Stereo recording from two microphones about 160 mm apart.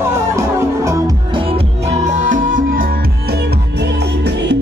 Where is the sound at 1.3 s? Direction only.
35° right (ahead or behind).